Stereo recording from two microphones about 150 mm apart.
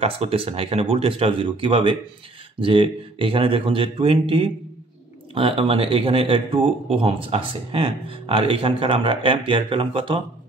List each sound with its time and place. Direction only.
0.0 s speech: 40° right (ahead or behind)